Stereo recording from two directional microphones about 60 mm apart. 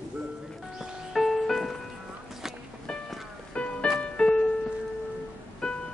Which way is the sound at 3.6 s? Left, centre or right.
Centre.